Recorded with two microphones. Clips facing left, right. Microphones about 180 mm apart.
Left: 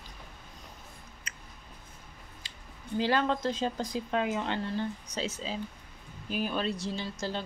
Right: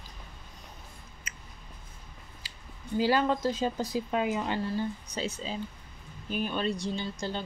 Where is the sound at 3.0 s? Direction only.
5° right (ahead or behind).